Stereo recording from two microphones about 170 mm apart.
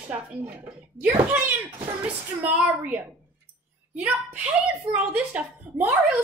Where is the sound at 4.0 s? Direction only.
5° right (ahead or behind).